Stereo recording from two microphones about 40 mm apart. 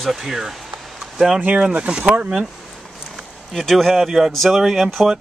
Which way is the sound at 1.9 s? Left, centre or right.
Right.